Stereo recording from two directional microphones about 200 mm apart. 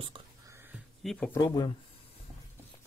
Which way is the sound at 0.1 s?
15° right (ahead or behind).